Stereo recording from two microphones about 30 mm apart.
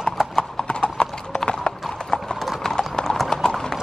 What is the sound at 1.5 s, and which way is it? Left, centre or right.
Clip-clop, left.